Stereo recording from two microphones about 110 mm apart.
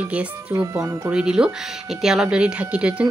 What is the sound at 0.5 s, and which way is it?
Speech, 30° right (ahead or behind).